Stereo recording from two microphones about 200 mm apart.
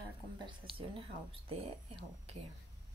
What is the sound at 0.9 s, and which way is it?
Speech, 30° right (ahead or behind).